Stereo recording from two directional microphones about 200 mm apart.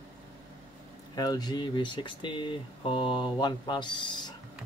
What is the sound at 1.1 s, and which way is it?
Speech, 20° left (ahead or behind).